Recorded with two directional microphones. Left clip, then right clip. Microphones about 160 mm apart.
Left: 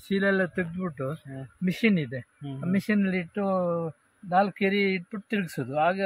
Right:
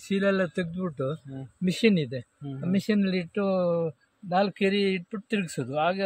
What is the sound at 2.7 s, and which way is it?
Speech, 25° right (ahead or behind).